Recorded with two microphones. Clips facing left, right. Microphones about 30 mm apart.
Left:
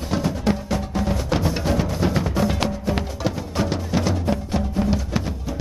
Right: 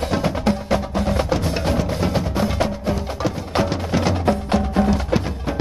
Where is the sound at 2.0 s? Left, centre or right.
Centre.